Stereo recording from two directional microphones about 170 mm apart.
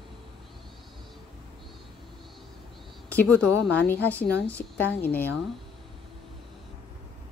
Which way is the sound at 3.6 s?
10° left (ahead or behind).